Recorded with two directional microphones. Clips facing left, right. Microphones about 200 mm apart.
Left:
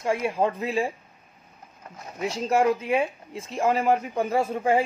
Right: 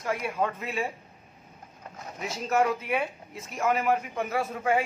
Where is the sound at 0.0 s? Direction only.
25° left (ahead or behind).